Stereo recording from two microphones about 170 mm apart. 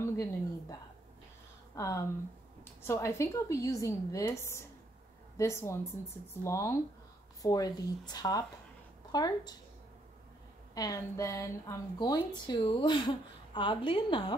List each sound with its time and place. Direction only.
0.0 s a sound: 20° left (ahead or behind)
1.8 s a woman's voice: 20° left (ahead or behind)
10.7 s speech: 20° left (ahead or behind)